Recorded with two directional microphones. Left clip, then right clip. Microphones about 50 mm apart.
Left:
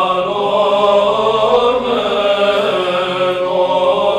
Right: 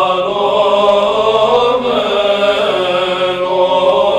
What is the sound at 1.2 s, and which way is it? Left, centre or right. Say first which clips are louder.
Chant: right 2 dB; centre.